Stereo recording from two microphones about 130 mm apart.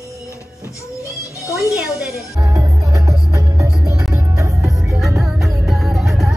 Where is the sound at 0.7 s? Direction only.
25° left (ahead or behind).